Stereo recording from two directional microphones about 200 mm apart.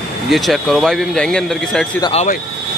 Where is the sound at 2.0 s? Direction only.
30° left (ahead or behind).